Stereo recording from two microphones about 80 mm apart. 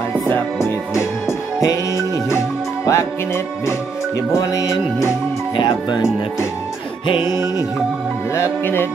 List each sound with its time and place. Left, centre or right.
1.6 s music: left
4.4 s music: left
5.6 s speech: left
7.2 s music: right
8.4 s music: left